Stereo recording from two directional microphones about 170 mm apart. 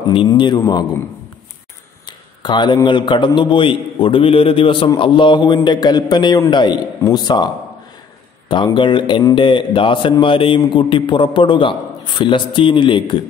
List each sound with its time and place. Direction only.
0.1 s a man's voice: 30° left (ahead or behind)
2.0 s a man's voice: 25° left (ahead or behind)